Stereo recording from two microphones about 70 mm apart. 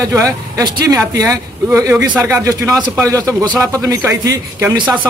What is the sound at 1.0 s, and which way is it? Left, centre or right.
Speech, right.